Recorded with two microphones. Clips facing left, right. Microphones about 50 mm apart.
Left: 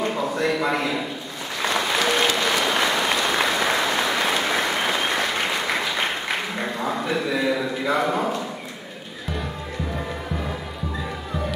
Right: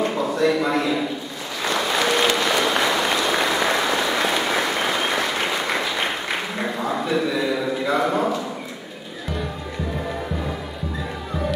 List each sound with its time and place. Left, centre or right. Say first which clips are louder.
0.5 s a man's voice: right 2 dB; centre
1.8 s a sound: right 1 dB; centre
2.3 s applause: right 1 dB; centre